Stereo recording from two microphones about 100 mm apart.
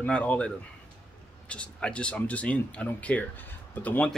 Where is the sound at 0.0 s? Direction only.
15° left (ahead or behind).